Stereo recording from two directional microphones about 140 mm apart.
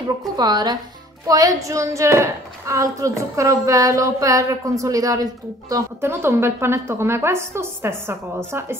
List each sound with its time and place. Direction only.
0.4 s a woman's voice: 30° right (ahead or behind)